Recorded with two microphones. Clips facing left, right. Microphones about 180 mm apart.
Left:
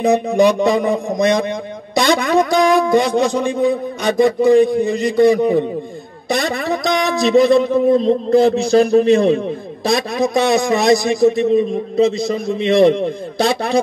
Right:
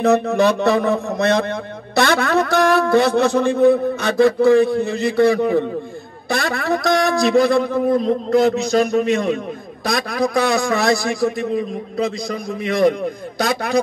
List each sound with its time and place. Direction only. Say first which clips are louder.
0.0 s a man's voice: left 2 dB; 15° left (ahead or behind)